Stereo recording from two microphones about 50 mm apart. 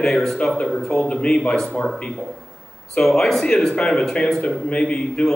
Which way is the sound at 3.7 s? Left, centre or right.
Left.